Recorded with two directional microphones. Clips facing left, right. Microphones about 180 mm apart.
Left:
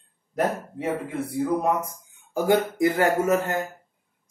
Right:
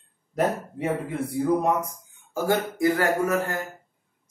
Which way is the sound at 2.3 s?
20° left (ahead or behind).